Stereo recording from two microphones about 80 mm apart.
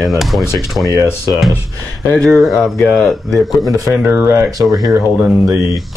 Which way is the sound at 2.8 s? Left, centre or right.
Centre.